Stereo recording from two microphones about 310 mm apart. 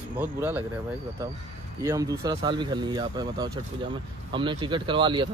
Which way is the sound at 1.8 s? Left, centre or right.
Centre.